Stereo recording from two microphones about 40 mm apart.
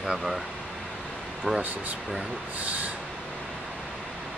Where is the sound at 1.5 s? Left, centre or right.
Right.